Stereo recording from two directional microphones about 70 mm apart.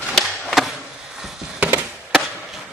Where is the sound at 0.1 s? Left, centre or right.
Centre.